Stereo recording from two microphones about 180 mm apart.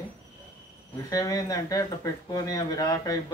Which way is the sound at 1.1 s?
20° left (ahead or behind).